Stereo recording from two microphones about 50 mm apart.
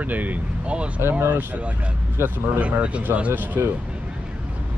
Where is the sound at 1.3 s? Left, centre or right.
Right.